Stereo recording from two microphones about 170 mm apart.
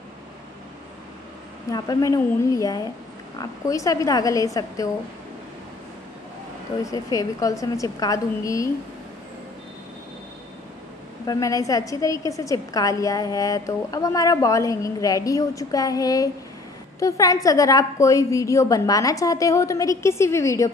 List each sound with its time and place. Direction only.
1.7 s a woman's voice: 20° left (ahead or behind)
6.8 s a woman's voice: 20° left (ahead or behind)
11.2 s a woman's voice: 20° left (ahead or behind)